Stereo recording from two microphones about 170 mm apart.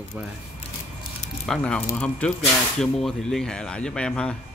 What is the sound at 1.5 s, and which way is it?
Speech, 5° left (ahead or behind).